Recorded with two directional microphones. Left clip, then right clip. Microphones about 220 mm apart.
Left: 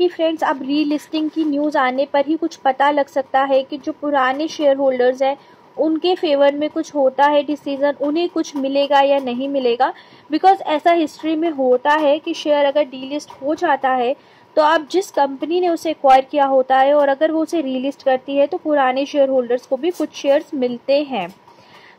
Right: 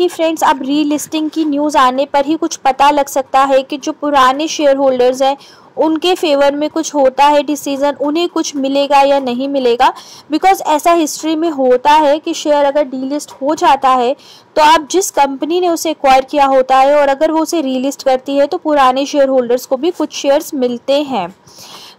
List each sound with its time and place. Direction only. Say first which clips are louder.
0.0 s a woman's voice: right 5 dB; 20° right (ahead or behind)